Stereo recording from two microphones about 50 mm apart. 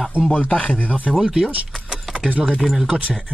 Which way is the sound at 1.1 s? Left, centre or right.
Centre.